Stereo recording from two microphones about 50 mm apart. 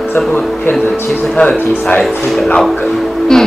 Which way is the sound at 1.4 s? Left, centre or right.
Left.